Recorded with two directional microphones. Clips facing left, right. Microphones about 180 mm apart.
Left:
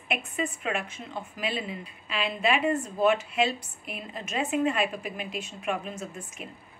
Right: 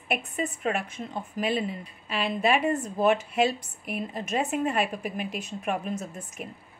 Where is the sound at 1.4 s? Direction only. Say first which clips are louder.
Right 5 dB; 45° right (ahead or behind).